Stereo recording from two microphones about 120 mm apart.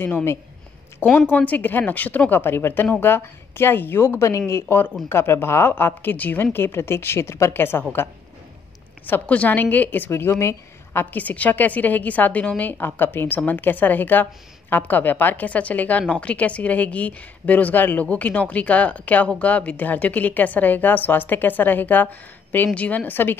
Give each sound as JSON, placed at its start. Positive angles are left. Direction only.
{"t": 0.0, "sound": "a woman's voice", "side_deg": 20}
{"t": 9.0, "sound": "a woman's voice", "side_deg": 15}